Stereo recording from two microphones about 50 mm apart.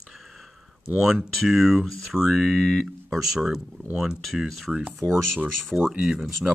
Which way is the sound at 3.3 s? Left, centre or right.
Centre.